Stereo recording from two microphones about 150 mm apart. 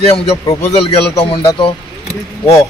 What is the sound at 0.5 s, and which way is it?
Speech, 45° left (ahead or behind).